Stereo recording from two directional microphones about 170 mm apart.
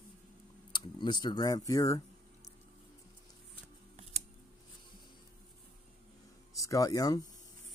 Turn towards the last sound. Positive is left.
turn(degrees=20)  # may be behind; listen again after turning